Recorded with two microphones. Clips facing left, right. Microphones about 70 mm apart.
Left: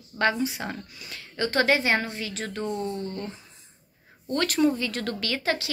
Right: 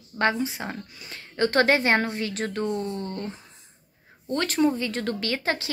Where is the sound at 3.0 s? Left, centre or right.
Right.